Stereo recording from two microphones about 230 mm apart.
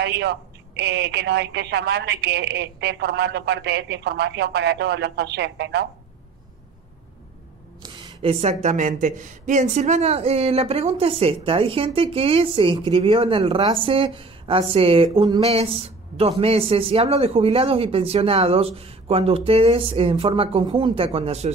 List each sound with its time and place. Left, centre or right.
0.0 s a woman's voice: right
7.8 s speech: right